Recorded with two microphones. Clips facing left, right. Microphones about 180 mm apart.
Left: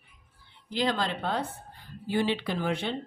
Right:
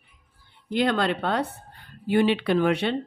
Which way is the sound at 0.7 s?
60° right (ahead or behind).